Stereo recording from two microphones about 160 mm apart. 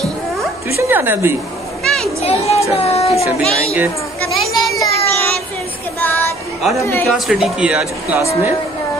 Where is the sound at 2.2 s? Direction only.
40° left (ahead or behind).